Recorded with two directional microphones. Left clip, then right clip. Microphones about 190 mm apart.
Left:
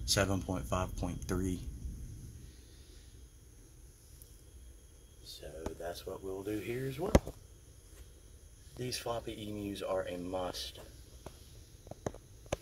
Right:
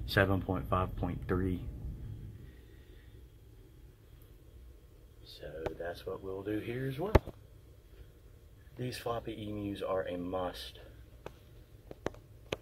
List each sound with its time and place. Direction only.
0.0 s speech: 5° left (ahead or behind)
5.2 s a sound: 10° left (ahead or behind)
8.7 s speech: 5° left (ahead or behind)